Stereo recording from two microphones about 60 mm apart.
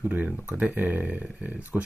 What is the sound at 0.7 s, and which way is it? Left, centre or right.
Speech, right.